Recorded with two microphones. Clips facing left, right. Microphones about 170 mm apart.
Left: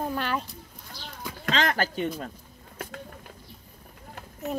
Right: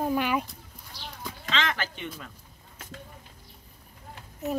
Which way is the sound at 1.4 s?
40° left (ahead or behind).